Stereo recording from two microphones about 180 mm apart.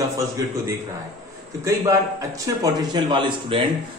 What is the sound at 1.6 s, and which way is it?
A man's voice, 15° right (ahead or behind).